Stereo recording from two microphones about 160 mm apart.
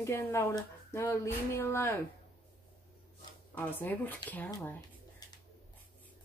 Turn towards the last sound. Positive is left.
turn(degrees=10)  # may be behind; listen again after turning